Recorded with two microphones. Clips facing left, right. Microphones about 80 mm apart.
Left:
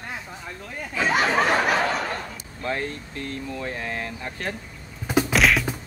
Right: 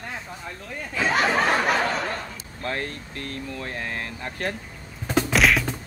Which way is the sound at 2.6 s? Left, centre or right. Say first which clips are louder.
Left 2 dB; left.